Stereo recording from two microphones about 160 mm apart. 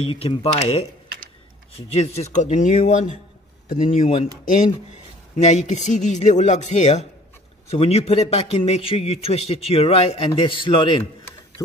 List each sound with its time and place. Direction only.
0.0 s a man's voice: 35° left (ahead or behind)
1.9 s a man's voice: 40° left (ahead or behind)
5.3 s a man's voice: 45° left (ahead or behind)